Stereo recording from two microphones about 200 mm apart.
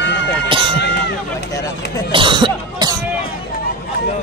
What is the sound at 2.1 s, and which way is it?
Speech, 25° right (ahead or behind).